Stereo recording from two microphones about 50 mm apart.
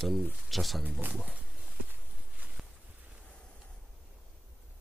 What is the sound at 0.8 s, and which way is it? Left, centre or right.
Speech, right.